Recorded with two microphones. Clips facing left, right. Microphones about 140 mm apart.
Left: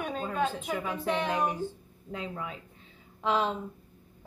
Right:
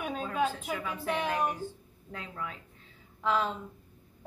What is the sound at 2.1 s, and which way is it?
Speech, 20° left (ahead or behind).